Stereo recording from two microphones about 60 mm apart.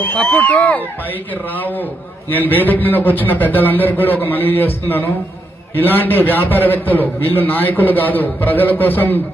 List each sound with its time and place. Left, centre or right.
0.0 s speech: left
2.3 s a man's voice: left